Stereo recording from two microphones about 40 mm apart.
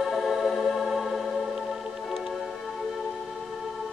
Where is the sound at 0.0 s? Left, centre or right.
Centre.